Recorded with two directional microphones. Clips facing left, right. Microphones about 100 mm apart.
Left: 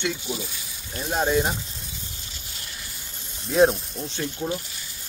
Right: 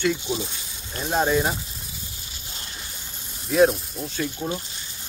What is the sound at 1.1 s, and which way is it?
Speech, 15° right (ahead or behind).